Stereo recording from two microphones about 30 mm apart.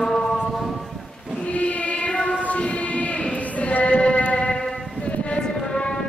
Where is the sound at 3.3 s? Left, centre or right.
Left.